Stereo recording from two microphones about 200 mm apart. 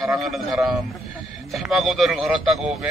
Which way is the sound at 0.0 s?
Centre (ahead or behind).